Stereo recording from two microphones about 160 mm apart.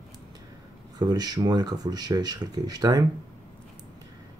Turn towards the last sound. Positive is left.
turn(degrees=-25)  # may be behind; listen again after turning